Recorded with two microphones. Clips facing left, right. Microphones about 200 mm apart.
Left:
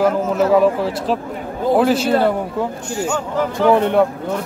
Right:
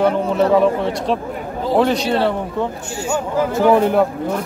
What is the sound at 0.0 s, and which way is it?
Speech, 5° left (ahead or behind).